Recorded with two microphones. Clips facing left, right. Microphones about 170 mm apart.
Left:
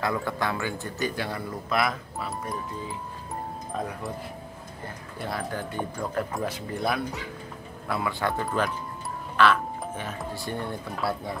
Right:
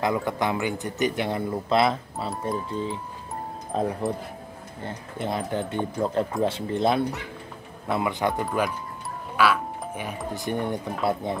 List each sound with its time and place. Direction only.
0.0 s a man's voice: 20° right (ahead or behind)